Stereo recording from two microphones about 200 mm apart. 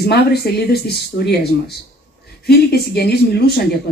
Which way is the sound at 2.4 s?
55° left (ahead or behind).